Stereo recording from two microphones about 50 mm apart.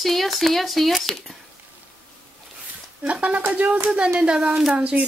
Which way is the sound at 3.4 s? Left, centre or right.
Right.